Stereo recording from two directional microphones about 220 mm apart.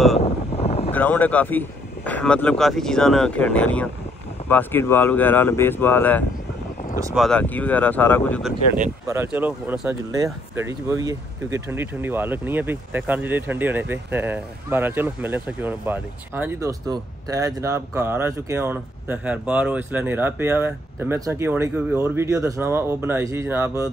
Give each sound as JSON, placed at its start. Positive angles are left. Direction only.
{"t": 0.2, "sound": "a sound", "side_deg": 30}
{"t": 0.9, "sound": "speech", "side_deg": 10}
{"t": 9.0, "sound": "speech", "side_deg": -10}